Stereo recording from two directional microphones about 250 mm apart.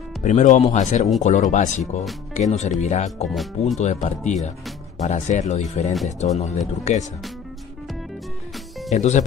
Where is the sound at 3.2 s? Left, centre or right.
Centre.